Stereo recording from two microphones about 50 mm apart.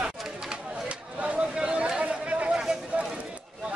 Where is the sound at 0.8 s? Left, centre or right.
Right.